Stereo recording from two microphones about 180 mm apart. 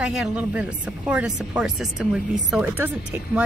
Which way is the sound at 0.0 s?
5° right (ahead or behind).